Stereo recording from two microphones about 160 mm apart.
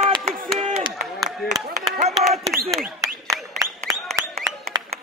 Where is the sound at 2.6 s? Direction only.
Centre (ahead or behind).